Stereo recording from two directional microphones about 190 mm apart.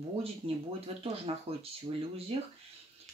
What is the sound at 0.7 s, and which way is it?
Speech, 30° right (ahead or behind).